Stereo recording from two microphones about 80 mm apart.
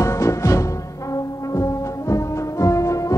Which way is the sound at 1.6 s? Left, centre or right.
Left.